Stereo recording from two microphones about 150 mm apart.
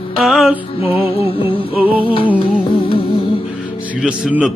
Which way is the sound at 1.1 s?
40° left (ahead or behind).